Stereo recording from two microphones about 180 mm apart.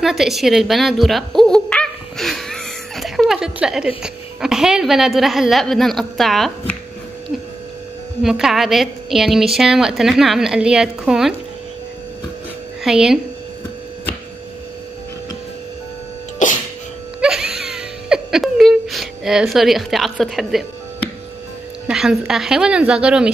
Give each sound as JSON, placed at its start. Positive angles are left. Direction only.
{"t": 0.0, "sound": "speech", "side_deg": 0}
{"t": 8.2, "sound": "a woman's voice", "side_deg": 0}
{"t": 12.8, "sound": "a woman's voice", "side_deg": -5}
{"t": 16.4, "sound": "music", "side_deg": 45}
{"t": 17.2, "sound": "whimper", "side_deg": -5}
{"t": 21.8, "sound": "a woman's voice", "side_deg": 0}